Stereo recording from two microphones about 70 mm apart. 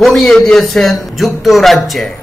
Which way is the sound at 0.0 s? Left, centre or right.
Centre.